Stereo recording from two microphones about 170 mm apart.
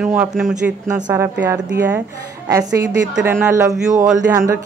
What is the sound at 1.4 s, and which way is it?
Speech, 20° right (ahead or behind).